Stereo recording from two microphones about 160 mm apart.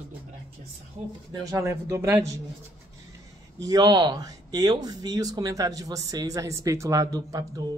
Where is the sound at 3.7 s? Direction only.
25° right (ahead or behind).